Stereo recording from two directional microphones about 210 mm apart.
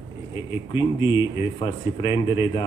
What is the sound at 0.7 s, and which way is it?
Speech, 25° left (ahead or behind).